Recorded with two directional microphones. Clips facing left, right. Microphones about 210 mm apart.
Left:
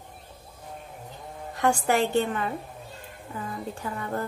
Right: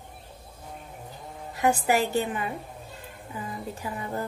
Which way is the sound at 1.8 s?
5° right (ahead or behind).